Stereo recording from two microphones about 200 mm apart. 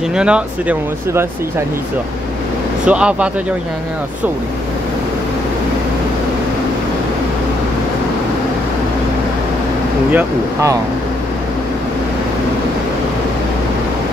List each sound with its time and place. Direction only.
0.1 s speech: 5° right (ahead or behind)
2.8 s speech: 5° right (ahead or behind)
10.1 s speech: 15° right (ahead or behind)